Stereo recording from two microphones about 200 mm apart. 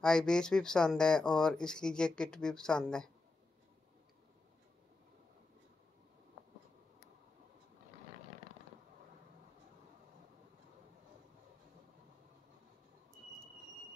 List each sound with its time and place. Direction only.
0.0 s speech: 5° left (ahead or behind)